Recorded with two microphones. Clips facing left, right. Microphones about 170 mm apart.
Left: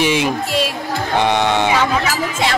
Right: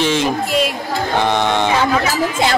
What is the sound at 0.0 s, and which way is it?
Speech, 10° left (ahead or behind).